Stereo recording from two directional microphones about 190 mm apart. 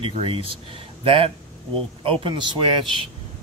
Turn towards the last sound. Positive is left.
turn(degrees=-25)  # may be behind; listen again after turning